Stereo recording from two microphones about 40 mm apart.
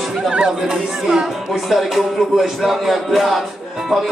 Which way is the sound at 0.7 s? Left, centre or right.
Centre.